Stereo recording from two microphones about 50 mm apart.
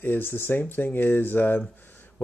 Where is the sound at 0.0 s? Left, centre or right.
Left.